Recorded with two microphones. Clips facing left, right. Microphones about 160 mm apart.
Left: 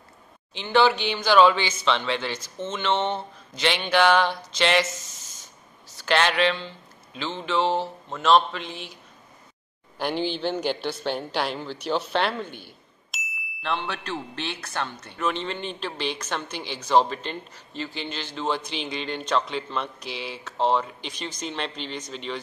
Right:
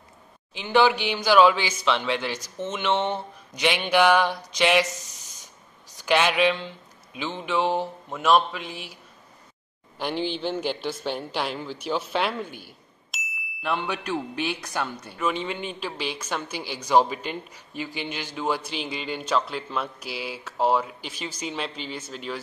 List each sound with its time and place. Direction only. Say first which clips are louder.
0.6 s a man's voice: even; 10° right (ahead or behind)
5.9 s a man's voice: right 1 dB; 10° right (ahead or behind)
9.9 s a man's voice: left 1 dB; centre (ahead or behind)